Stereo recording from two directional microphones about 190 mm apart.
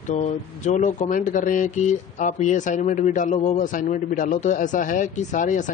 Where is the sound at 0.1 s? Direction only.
40° left (ahead or behind).